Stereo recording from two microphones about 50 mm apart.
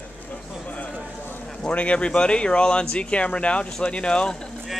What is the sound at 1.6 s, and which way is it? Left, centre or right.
Speech, left.